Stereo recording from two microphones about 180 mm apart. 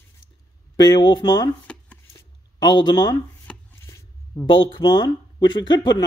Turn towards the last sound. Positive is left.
turn(degrees=25)  # may be behind; listen again after turning